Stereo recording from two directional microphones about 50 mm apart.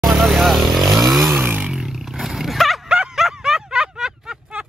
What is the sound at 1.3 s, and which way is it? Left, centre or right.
Roar, right.